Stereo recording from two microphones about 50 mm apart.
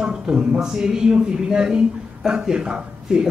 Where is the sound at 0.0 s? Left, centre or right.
Centre.